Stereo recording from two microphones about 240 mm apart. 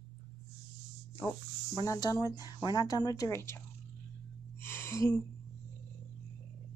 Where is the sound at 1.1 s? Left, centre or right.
Centre.